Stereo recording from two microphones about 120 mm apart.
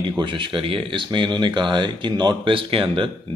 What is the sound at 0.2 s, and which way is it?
Speech, 45° right (ahead or behind).